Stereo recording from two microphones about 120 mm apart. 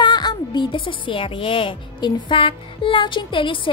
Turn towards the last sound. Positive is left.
turn(degrees=45)  # may be behind; listen again after turning